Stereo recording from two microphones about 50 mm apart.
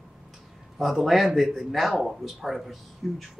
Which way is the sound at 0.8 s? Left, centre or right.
Centre.